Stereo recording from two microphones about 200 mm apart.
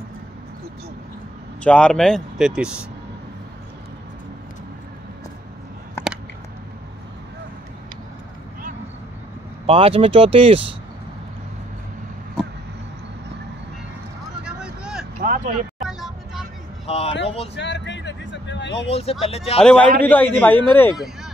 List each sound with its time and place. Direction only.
1.6 s speech: 5° left (ahead or behind)
6.0 s a sound: 10° left (ahead or behind)
9.7 s speech: 30° right (ahead or behind)
14.4 s vehicle: 5° right (ahead or behind)
15.2 s vehicle: 45° right (ahead or behind)
15.8 s vehicle: centre (ahead or behind)
16.8 s speech: 30° left (ahead or behind)
17.6 s music: 60° left (ahead or behind)
18.9 s speech: 30° left (ahead or behind)
19.6 s a man's voice: 5° left (ahead or behind)